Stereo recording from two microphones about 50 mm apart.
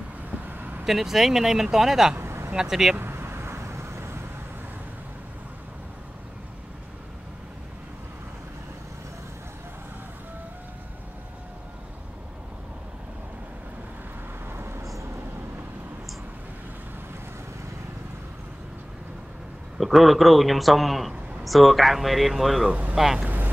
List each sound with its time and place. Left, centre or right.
0.5 s vehicle: right
0.8 s speech: centre
2.1 s vehicle: right
2.5 s speech: centre
3.0 s vehicle: right
14.5 s vehicle: right
19.8 s a man's voice: centre
23.2 s boat: right